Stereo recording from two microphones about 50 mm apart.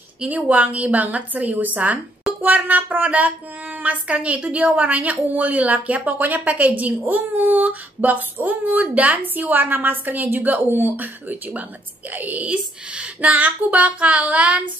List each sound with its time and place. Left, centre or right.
0.3 s speech: right
12.9 s child singing: right